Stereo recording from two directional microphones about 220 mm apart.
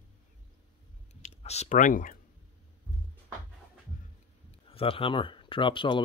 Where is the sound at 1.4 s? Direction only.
30° left (ahead or behind).